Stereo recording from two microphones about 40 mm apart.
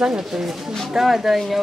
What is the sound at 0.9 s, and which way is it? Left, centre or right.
Speech, centre.